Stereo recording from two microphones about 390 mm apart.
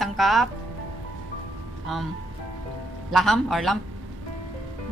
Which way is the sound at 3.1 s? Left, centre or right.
Centre.